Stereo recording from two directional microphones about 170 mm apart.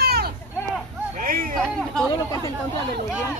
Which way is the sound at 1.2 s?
55° right (ahead or behind).